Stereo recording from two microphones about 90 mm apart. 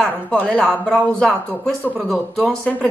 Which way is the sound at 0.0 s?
10° left (ahead or behind).